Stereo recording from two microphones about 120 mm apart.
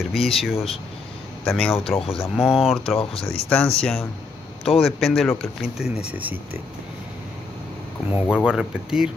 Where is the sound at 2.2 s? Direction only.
5° right (ahead or behind).